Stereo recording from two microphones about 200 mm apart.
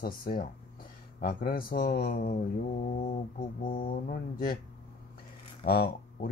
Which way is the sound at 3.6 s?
25° left (ahead or behind).